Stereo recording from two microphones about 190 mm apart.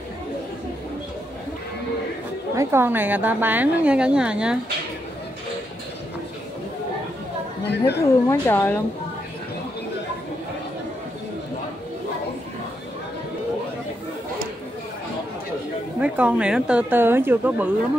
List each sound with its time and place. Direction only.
2.5 s a woman's voice: 15° right (ahead or behind)
7.6 s speech: 60° left (ahead or behind)
8.0 s speech: 15° left (ahead or behind)
16.0 s a woman's voice: 5° right (ahead or behind)